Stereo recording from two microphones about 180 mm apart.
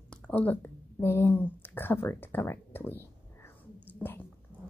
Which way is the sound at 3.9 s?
10° left (ahead or behind).